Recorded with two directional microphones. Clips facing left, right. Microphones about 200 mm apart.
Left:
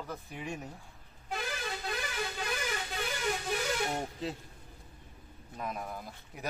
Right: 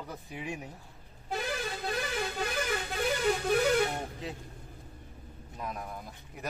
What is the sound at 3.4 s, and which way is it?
Music, 60° right (ahead or behind).